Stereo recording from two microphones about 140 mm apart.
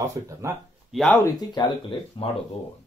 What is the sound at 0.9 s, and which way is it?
Speech, centre (ahead or behind).